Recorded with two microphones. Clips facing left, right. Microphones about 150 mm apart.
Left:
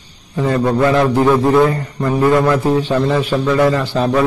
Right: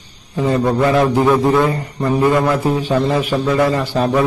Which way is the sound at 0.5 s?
5° right (ahead or behind).